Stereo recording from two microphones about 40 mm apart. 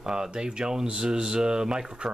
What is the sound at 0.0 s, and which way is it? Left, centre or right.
Speech, centre.